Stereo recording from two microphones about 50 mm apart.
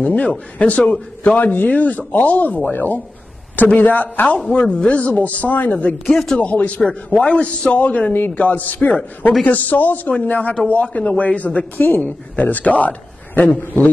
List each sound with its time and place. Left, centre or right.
0.0 s speech: left
4.5 s speech: left
6.1 s speech: centre
6.4 s speech: left
8.1 s a man's voice: left